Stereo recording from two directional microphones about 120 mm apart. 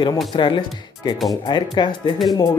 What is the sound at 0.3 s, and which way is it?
Speech, 40° left (ahead or behind).